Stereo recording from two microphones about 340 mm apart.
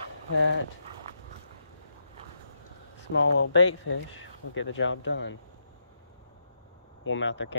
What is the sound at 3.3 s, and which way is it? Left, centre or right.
Speech, left.